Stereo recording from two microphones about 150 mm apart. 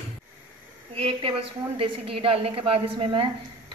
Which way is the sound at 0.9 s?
35° right (ahead or behind).